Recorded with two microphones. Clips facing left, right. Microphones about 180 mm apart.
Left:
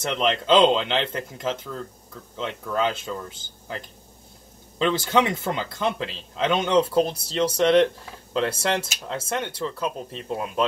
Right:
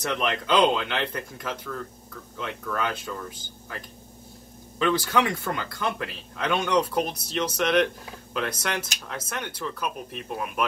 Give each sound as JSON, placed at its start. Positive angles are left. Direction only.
{"t": 0.0, "sound": "speech", "side_deg": 25}